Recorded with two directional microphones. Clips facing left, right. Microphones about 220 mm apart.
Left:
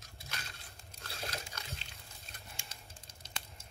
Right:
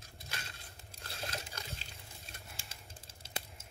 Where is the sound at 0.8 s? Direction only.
30° right (ahead or behind).